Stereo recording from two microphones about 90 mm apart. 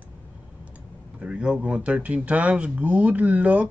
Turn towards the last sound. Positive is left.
turn(degrees=-15)  # may be behind; listen again after turning